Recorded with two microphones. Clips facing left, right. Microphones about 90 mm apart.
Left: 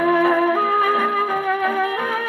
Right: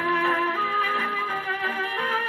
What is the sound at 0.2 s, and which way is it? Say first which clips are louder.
Music: left 7 dB; 15° left (ahead or behind).